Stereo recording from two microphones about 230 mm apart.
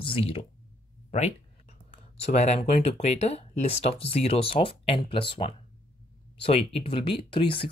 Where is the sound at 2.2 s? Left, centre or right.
Left.